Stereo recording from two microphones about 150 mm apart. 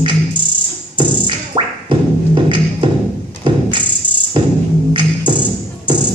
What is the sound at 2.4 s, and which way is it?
Beatboxing, 35° right (ahead or behind).